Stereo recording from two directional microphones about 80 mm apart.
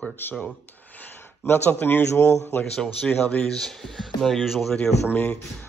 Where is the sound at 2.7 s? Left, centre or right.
Centre.